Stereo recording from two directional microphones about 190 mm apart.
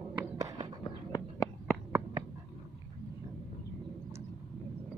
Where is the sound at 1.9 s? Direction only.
10° right (ahead or behind).